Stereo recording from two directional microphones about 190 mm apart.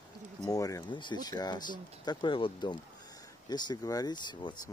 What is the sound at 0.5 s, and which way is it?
Speech, 15° left (ahead or behind).